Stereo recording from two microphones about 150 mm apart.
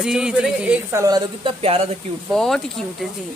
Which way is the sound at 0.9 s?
20° right (ahead or behind).